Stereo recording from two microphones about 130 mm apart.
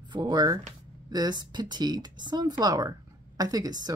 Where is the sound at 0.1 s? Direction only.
35° right (ahead or behind).